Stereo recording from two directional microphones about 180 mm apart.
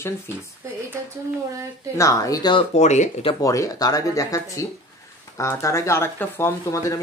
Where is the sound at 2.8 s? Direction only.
40° left (ahead or behind).